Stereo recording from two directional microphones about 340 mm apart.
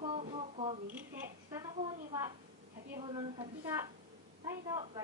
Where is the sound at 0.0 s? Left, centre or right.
Centre.